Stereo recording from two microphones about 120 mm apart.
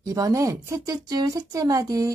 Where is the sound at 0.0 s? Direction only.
25° right (ahead or behind).